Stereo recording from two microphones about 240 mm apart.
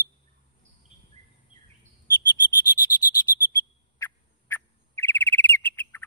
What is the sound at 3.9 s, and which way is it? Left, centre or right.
Bird, centre.